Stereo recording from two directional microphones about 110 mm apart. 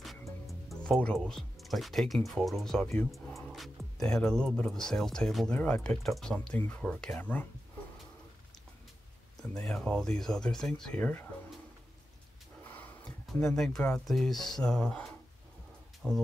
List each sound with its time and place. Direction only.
0.5 s speech: centre (ahead or behind)
3.3 s music: centre (ahead or behind)
4.6 s speech: 5° left (ahead or behind)
7.2 s speech: 15° left (ahead or behind)
9.4 s speech: 5° left (ahead or behind)
12.6 s speech: 15° left (ahead or behind); by 16.2 s centre (ahead or behind)